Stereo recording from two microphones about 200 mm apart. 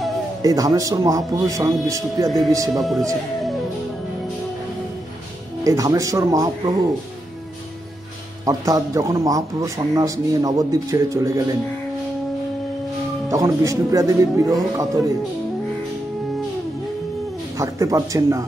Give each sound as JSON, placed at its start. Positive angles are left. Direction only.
{"t": 0.4, "sound": "a man's voice", "side_deg": -20}
{"t": 2.8, "sound": "speech", "side_deg": 0}
{"t": 5.6, "sound": "a man's voice", "side_deg": -15}
{"t": 8.5, "sound": "a man's voice", "side_deg": -15}
{"t": 13.3, "sound": "a man's voice", "side_deg": -15}
{"t": 17.6, "sound": "a man's voice", "side_deg": -15}